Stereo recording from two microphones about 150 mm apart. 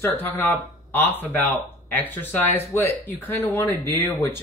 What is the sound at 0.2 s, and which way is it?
Speech, 15° left (ahead or behind).